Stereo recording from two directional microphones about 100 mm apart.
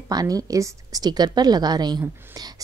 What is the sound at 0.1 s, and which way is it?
A woman's voice, 40° right (ahead or behind).